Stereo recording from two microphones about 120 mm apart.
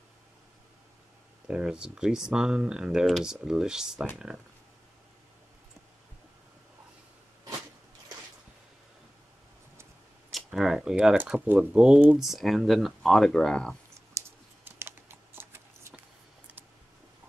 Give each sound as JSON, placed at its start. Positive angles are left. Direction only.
{"t": 1.5, "sound": "speech", "side_deg": -5}
{"t": 10.3, "sound": "speech", "side_deg": -5}
{"t": 14.1, "sound": "computer keyboard", "side_deg": -20}